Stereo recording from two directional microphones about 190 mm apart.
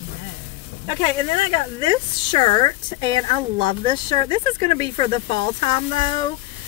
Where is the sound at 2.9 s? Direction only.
25° left (ahead or behind).